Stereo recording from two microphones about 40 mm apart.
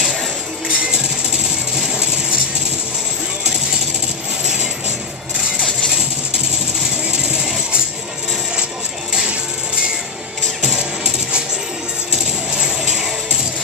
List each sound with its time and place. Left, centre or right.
0.7 s music: right
1.8 s a sound: centre
7.1 s music: centre
10.6 s music: centre
12.5 s music: centre